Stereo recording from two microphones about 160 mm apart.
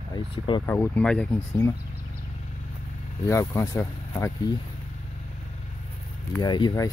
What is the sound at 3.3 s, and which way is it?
Speech, 15° left (ahead or behind).